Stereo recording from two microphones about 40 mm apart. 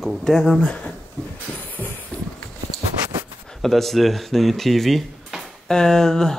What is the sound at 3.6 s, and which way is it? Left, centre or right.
Speech, centre.